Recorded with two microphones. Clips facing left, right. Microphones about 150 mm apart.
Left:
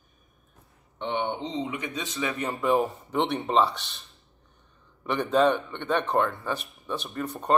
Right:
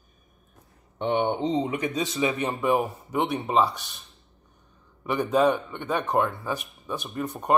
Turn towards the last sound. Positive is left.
turn(degrees=-15)  # may be behind; listen again after turning